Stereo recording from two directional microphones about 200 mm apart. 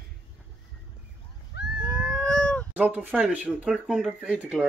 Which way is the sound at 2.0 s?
5° left (ahead or behind).